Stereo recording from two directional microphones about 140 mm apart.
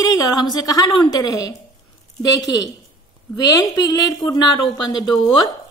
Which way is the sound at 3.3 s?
25° left (ahead or behind).